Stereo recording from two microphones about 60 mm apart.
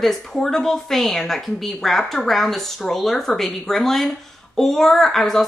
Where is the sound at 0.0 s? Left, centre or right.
Centre.